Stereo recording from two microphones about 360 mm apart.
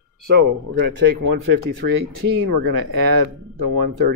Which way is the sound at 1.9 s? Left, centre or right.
Right.